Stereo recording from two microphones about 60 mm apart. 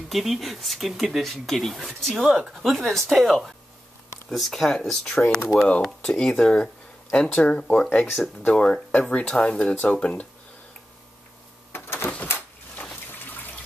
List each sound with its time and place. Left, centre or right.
0.1 s speech: centre
11.7 s a sound: left
13.1 s water: left